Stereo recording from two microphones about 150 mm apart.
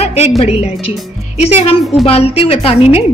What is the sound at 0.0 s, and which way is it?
Music, 45° left (ahead or behind).